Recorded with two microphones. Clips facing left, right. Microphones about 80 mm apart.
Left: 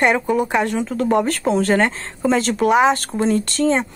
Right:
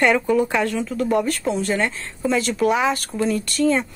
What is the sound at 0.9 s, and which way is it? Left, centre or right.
Speech, left.